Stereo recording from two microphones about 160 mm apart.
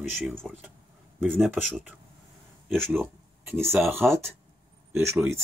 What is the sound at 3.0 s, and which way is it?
Speech, 15° right (ahead or behind).